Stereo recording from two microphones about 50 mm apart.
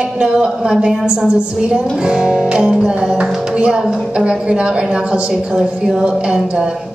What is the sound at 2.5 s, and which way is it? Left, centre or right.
Music, centre.